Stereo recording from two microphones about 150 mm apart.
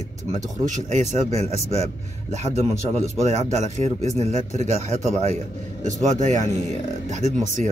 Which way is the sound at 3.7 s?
50° right (ahead or behind).